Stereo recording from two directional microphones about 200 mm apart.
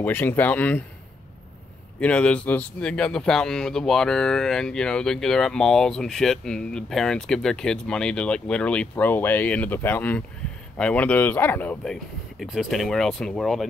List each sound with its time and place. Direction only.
0.0 s speech: 10° left (ahead or behind)
2.0 s speech: 5° left (ahead or behind)